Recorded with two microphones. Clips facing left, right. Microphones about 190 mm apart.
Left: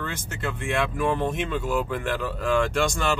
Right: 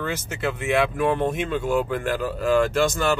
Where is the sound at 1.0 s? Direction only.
55° right (ahead or behind).